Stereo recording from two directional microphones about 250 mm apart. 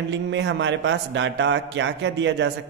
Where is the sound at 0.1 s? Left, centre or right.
Right.